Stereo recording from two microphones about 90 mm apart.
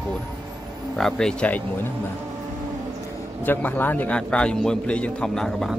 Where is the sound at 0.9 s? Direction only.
5° left (ahead or behind).